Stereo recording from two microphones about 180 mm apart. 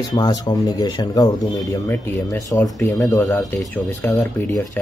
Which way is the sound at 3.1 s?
15° left (ahead or behind).